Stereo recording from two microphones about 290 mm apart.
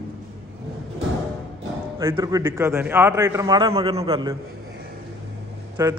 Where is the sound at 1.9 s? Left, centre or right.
Centre.